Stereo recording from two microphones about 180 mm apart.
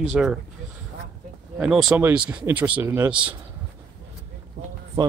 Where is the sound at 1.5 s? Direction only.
Centre (ahead or behind).